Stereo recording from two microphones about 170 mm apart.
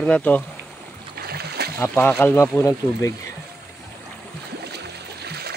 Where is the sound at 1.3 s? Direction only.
70° right (ahead or behind).